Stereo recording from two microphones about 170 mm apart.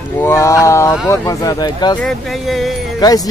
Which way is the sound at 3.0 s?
25° left (ahead or behind).